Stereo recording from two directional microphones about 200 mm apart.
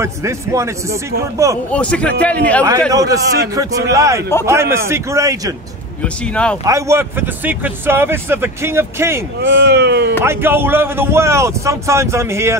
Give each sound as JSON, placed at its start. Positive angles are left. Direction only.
{"t": 0.0, "sound": "speech", "side_deg": -15}
{"t": 1.7, "sound": "a man's voice", "side_deg": 5}
{"t": 2.9, "sound": "speech", "side_deg": -15}
{"t": 6.0, "sound": "speech", "side_deg": 5}
{"t": 6.6, "sound": "speech", "side_deg": -15}
{"t": 9.4, "sound": "speech", "side_deg": -65}
{"t": 10.2, "sound": "speech", "side_deg": -10}